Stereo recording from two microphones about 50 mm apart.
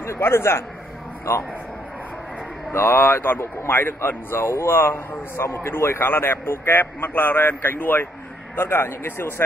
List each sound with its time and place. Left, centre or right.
0.0 s a man's voice: left
2.7 s speech: left
8.5 s speech: left